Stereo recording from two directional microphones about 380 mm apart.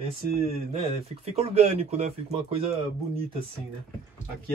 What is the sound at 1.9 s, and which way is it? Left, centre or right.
Speech, centre.